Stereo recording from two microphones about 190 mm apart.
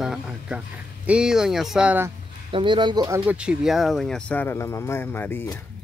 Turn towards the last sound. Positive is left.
turn(degrees=10)  # may be behind; listen again after turning